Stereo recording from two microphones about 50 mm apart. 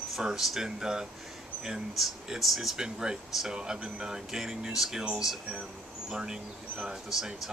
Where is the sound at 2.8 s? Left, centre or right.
Centre.